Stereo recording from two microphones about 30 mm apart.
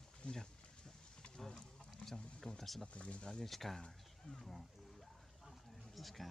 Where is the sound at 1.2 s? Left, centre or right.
Left.